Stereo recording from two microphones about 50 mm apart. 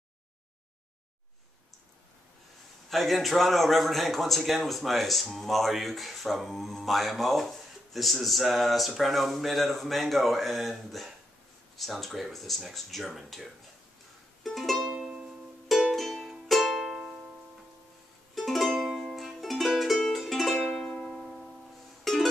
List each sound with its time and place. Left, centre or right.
2.9 s a man's voice: centre
14.4 s music: centre
14.9 s music: centre
15.9 s music: centre
18.3 s music: centre
20.6 s music: centre
21.1 s music: centre